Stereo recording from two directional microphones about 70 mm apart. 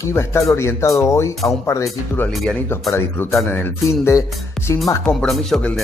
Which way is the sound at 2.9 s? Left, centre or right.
Left.